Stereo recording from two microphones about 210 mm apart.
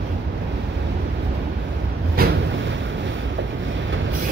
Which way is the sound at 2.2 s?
45° right (ahead or behind).